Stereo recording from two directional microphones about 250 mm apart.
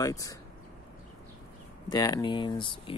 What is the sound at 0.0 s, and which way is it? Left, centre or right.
Speech, centre.